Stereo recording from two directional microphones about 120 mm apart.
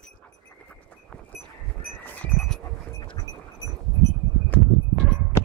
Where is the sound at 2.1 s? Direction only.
10° left (ahead or behind).